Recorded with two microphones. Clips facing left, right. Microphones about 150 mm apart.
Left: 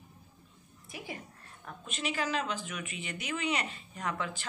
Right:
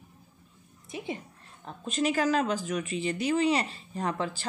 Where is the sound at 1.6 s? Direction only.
35° right (ahead or behind).